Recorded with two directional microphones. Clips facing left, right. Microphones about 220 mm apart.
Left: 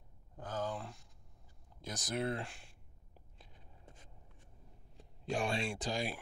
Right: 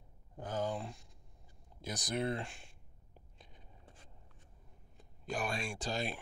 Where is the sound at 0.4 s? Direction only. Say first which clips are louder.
Right 2 dB; 15° right (ahead or behind).